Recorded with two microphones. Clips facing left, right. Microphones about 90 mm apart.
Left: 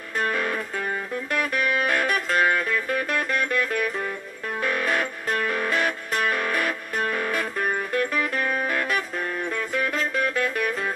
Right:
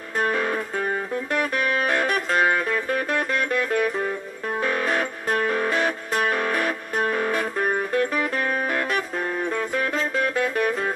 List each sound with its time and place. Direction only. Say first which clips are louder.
0.3 s music: right 2 dB; 20° right (ahead or behind)